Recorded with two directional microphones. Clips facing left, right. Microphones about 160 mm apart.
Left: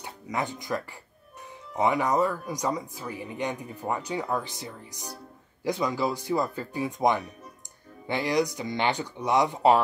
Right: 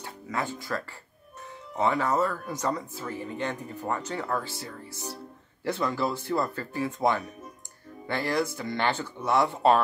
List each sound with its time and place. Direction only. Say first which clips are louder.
0.0 s speech: left 1 dB; 15° left (ahead or behind)